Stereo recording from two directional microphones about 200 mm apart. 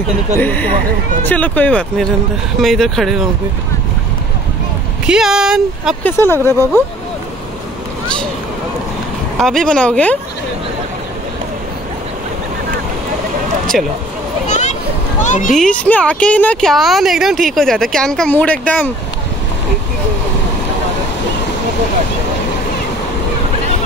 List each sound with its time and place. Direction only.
0.4 s speech: 10° left (ahead or behind)
5.0 s speech: 5° right (ahead or behind)
6.0 s speech: 10° left (ahead or behind)
9.4 s speech: centre (ahead or behind)
13.7 s speech: centre (ahead or behind)
14.5 s a sound: 35° left (ahead or behind)
15.2 s speech: 40° left (ahead or behind)
15.5 s speech: 5° left (ahead or behind)